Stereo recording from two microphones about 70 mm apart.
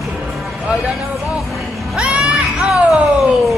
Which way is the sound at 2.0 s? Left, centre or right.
Centre.